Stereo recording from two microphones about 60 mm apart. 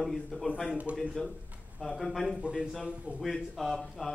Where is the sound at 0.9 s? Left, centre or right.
Right.